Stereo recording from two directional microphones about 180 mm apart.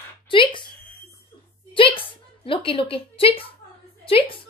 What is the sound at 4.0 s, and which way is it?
Speech, 30° left (ahead or behind).